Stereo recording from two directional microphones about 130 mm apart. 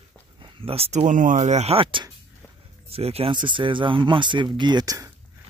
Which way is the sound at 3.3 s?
35° right (ahead or behind).